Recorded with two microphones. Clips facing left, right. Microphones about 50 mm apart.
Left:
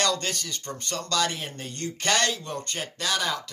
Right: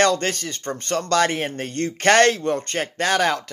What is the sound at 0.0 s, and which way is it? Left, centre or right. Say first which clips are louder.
A man's voice: right 8 dB; right.